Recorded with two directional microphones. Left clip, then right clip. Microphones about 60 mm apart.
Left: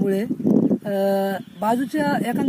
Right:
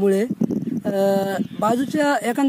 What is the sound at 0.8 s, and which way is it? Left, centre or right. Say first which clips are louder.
Speech: right 1 dB; right.